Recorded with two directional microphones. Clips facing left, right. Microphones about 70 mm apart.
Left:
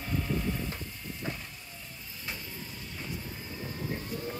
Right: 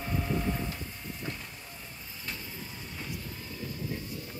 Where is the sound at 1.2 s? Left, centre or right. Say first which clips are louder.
Left 2 dB; left.